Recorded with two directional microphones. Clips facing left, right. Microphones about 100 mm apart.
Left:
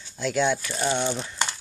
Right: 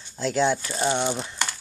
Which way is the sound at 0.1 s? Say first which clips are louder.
Right 1 dB; 30° right (ahead or behind).